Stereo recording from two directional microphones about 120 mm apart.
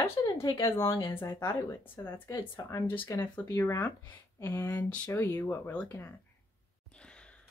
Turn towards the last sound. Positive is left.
turn(degrees=15)  # may be behind; listen again after turning